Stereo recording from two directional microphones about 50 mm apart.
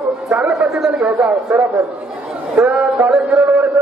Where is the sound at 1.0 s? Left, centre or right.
Right.